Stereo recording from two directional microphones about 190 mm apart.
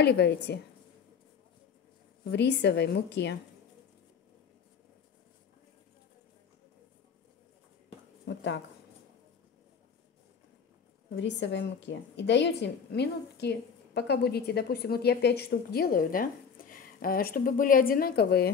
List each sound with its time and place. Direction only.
0.0 s a woman's voice: 60° left (ahead or behind)
2.3 s a woman's voice: 65° left (ahead or behind)
11.1 s a woman's voice: 70° left (ahead or behind)